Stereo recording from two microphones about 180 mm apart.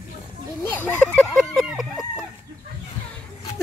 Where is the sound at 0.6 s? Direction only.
10° left (ahead or behind).